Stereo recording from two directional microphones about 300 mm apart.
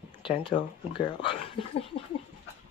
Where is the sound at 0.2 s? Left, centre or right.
Centre.